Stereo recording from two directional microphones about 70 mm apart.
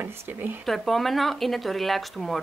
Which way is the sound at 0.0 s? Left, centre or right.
Right.